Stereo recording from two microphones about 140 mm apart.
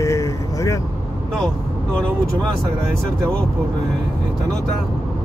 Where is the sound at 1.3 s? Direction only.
5° left (ahead or behind).